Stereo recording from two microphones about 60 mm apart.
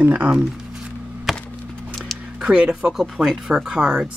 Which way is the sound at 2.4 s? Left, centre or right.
Centre.